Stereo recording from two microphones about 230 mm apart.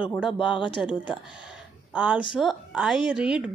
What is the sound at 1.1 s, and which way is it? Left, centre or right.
Speech, centre.